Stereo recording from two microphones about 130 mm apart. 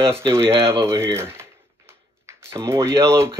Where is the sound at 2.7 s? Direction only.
25° right (ahead or behind).